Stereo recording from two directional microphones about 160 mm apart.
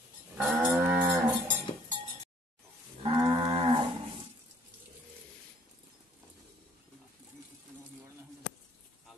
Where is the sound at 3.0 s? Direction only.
25° right (ahead or behind).